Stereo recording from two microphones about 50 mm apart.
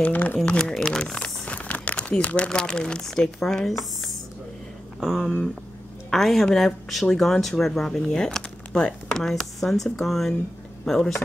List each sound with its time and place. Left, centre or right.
0.0 s speech: left
0.5 s speech: left
1.4 s speech: left; by 4.1 s centre
5.0 s speech: centre
6.0 s speech: centre